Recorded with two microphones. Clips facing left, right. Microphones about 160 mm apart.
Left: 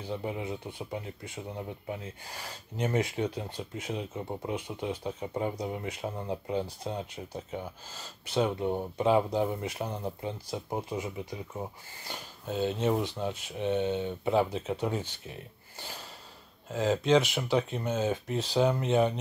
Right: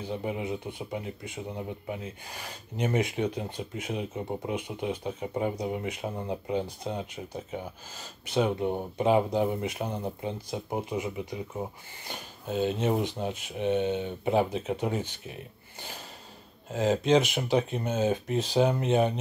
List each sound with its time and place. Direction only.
0.0 s speech: 20° right (ahead or behind)